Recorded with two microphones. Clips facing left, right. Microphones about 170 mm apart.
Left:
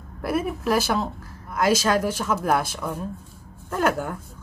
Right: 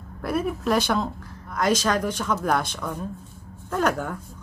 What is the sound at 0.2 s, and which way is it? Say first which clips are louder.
A woman's voice: even; 5° left (ahead or behind).